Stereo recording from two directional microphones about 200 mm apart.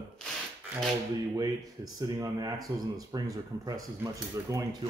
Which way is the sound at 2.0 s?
20° right (ahead or behind).